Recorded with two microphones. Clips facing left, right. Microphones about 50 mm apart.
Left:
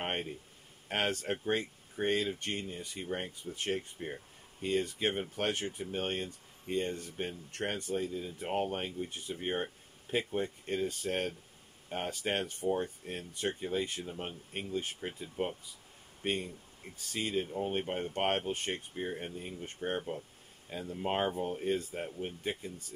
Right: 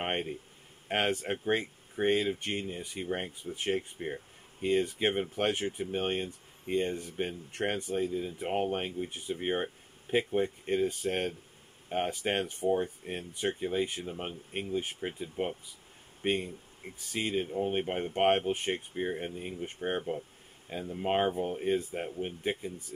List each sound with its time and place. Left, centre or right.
0.0 s speech: centre